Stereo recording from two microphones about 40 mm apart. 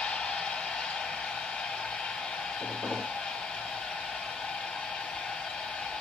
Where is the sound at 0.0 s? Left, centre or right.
Left.